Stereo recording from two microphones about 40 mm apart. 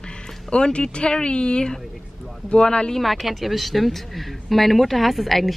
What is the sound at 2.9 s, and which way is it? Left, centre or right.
A woman's voice, centre.